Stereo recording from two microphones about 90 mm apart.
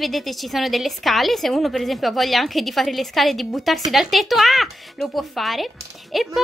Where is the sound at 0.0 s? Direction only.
Centre (ahead or behind).